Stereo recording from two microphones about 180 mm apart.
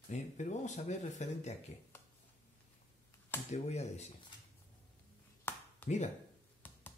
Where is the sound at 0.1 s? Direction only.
40° left (ahead or behind).